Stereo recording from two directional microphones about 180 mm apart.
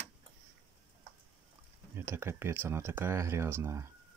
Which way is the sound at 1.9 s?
15° right (ahead or behind).